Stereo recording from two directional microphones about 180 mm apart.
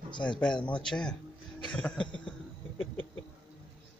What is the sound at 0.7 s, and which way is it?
A man's voice, 5° left (ahead or behind).